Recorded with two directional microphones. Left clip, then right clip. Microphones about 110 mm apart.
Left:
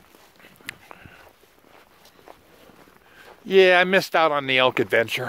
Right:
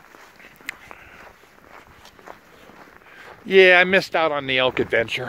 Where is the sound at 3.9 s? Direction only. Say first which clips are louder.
Even; 45° left (ahead or behind); by 5.2 s 70° left (ahead or behind).